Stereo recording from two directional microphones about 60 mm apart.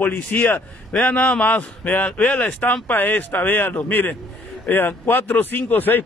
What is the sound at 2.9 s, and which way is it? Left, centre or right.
A man's voice, left.